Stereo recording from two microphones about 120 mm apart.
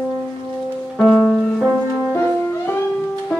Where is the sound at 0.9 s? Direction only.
5° left (ahead or behind).